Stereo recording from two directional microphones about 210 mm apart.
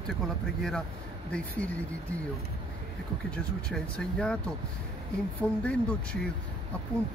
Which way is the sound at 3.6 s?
5° left (ahead or behind).